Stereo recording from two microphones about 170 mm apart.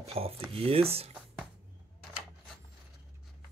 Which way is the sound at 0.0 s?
35° right (ahead or behind).